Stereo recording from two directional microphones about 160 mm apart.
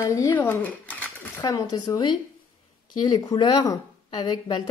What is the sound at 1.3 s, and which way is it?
Speech, 25° left (ahead or behind).